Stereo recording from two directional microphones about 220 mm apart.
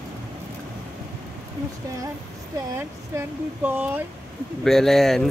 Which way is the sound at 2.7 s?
10° right (ahead or behind).